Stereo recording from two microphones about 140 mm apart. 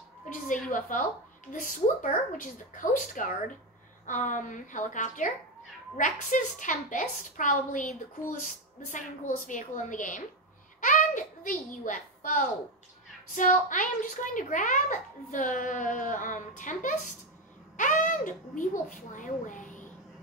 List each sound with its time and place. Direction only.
0.2 s a sound: 65° left (ahead or behind)
0.7 s a woman's voice: 65° left (ahead or behind)
8.9 s a woman's voice: 65° left (ahead or behind)